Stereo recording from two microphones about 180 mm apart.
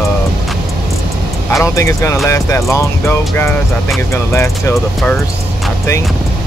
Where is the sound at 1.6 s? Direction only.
15° left (ahead or behind).